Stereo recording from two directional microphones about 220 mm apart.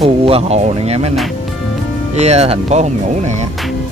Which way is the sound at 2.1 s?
30° right (ahead or behind).